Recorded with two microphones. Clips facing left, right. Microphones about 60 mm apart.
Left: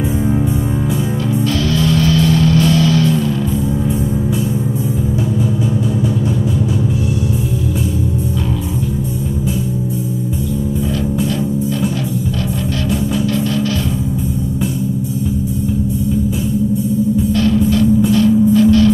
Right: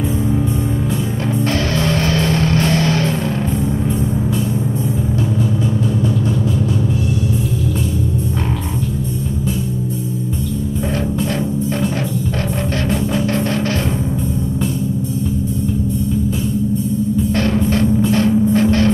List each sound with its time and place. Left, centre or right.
1.4 s music: right
13.1 s music: right
17.3 s music: right
18.1 s vehicle: right